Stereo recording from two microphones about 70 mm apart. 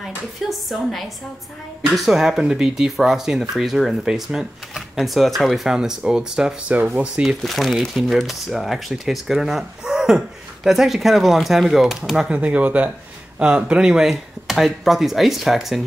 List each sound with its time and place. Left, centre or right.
0.0 s speech: centre
6.7 s speech: right
7.2 s speech: centre
12.3 s speech: centre